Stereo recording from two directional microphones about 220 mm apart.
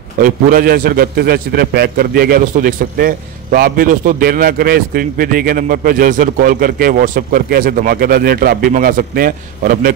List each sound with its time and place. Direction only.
0.2 s a man's voice: 40° right (ahead or behind)